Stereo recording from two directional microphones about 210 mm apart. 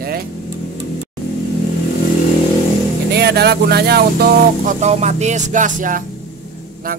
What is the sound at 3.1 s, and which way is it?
Speech, 50° right (ahead or behind).